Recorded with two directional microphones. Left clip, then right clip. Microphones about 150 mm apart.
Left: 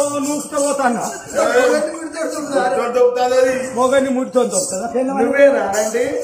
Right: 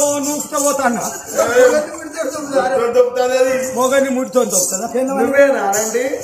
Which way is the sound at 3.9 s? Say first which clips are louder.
Even; 45° right (ahead or behind).